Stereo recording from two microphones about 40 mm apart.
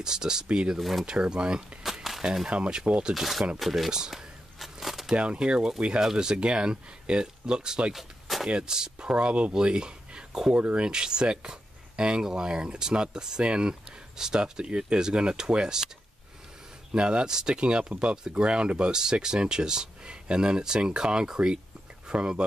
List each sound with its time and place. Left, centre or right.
0.0 s speech: centre
0.7 s speech: centre
1.0 s speech: right
2.1 s a sound: centre
2.4 s speech: right
3.2 s speech: centre
4.1 s a sound: centre
5.1 s speech: right
7.9 s a sound: centre
8.5 s speech: right
10.5 s speech: right
16.9 s speech: right